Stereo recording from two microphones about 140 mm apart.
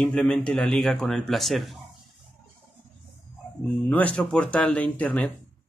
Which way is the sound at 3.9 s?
10° left (ahead or behind).